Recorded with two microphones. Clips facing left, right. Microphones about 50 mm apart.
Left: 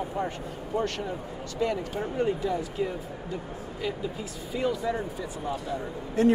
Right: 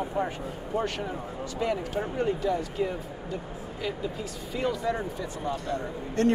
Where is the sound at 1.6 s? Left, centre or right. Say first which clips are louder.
Even; centre.